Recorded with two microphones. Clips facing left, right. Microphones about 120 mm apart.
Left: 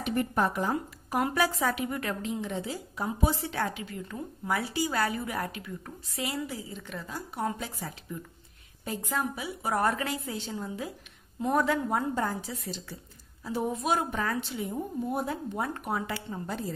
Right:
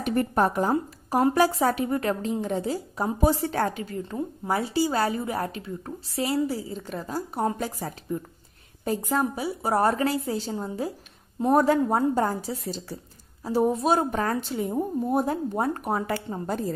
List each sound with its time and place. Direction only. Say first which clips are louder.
0.0 s speech: right 5 dB; 40° right (ahead or behind)